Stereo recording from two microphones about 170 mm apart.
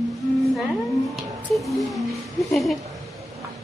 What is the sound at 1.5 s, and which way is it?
Speech, centre (ahead or behind).